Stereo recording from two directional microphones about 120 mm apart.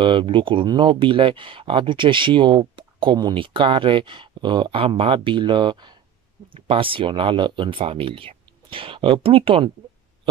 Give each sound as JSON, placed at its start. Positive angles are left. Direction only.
{"t": 0.0, "sound": "speech", "side_deg": -45}